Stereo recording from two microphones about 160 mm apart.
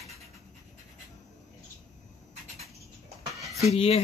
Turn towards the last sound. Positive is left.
turn(degrees=40)  # may be behind; listen again after turning